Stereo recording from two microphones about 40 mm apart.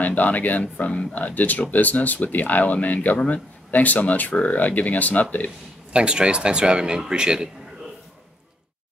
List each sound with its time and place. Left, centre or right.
0.0 s speech: left
5.9 s speech: right